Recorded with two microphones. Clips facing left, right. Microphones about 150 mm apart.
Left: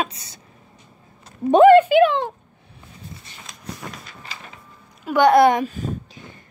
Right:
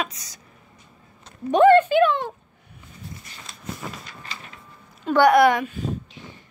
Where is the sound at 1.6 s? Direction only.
10° left (ahead or behind).